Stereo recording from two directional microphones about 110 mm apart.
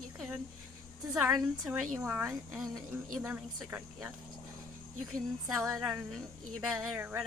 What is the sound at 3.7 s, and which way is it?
Speech, 20° right (ahead or behind).